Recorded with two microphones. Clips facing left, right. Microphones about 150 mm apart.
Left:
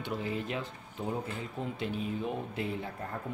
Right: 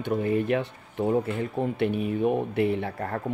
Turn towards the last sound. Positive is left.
turn(degrees=-75)  # may be behind; listen again after turning